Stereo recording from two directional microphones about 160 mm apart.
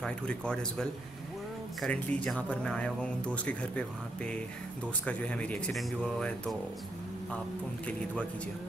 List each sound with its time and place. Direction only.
0.0 s speech: 5° left (ahead or behind)